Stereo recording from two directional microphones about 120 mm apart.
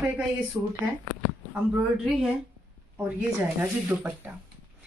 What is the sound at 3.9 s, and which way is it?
Speech, 15° right (ahead or behind).